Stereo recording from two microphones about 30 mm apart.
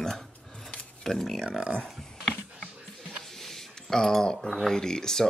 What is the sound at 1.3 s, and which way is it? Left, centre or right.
Speech, centre.